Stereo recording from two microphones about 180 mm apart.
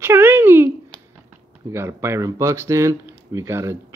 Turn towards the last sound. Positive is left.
turn(degrees=-15)  # may be behind; listen again after turning